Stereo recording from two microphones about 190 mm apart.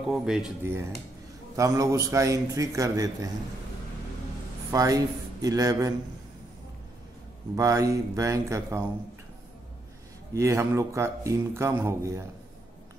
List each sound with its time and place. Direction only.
0.0 s speech: centre (ahead or behind)
1.6 s speech: 15° right (ahead or behind)
4.6 s speech: 15° right (ahead or behind)
7.5 s speech: 15° right (ahead or behind)
10.3 s speech: 15° right (ahead or behind)